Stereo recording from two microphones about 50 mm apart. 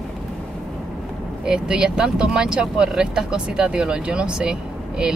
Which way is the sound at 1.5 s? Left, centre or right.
Centre.